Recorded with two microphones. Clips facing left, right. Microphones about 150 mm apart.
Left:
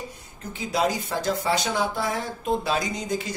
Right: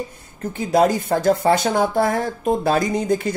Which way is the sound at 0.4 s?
50° right (ahead or behind).